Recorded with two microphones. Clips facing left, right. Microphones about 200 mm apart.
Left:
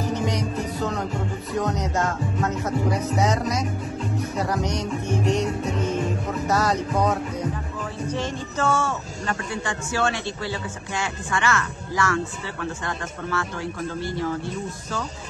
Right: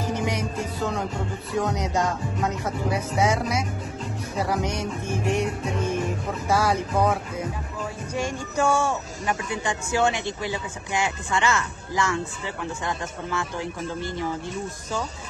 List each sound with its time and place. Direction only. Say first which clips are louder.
1.6 s speech: even; 15° right (ahead or behind)
6.4 s speech: even; 10° right (ahead or behind)